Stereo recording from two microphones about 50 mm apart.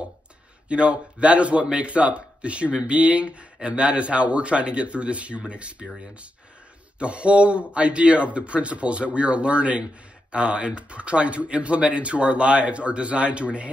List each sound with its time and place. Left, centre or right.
0.7 s speech: right
7.0 s speech: right